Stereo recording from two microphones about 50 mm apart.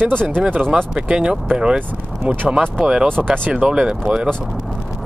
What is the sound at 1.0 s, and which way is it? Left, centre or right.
Speech, centre.